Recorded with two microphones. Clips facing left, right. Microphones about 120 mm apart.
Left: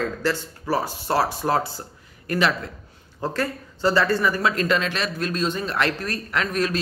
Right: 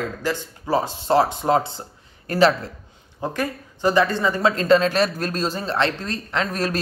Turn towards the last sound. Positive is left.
turn(degrees=-35)  # may be behind; listen again after turning